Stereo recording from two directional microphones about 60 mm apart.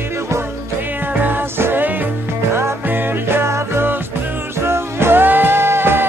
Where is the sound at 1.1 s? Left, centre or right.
Right.